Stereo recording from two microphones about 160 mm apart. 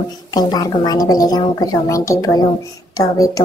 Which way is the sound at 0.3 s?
25° left (ahead or behind).